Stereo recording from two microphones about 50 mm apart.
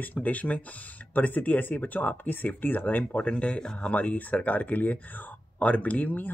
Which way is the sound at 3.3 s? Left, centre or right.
Left.